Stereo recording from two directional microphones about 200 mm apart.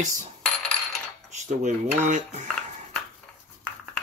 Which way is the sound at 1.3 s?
35° right (ahead or behind).